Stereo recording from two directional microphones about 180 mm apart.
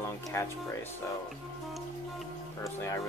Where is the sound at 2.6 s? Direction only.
15° left (ahead or behind).